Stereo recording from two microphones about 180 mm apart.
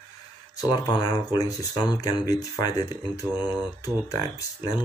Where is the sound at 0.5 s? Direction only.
20° left (ahead or behind).